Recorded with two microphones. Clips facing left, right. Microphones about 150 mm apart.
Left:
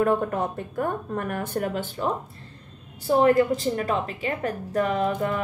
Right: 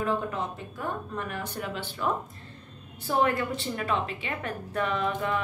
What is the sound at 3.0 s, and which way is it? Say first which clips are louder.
A woman's voice: left 7 dB; 35° left (ahead or behind).